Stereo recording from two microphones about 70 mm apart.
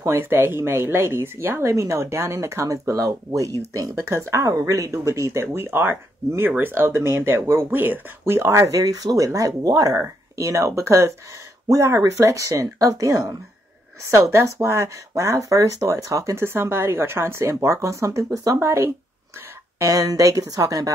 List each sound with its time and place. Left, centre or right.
0.0 s speech: right
4.1 s speech: right
4.6 s speech: right
8.4 s speech: right
10.3 s speech: right
14.0 s speech: right
19.8 s speech: right